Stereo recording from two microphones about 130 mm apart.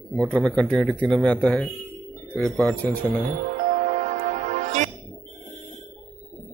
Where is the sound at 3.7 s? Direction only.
70° right (ahead or behind).